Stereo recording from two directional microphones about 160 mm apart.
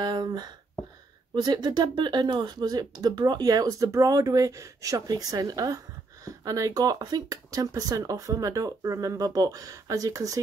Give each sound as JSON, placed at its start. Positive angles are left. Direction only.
{"t": 0.0, "sound": "speech", "side_deg": -25}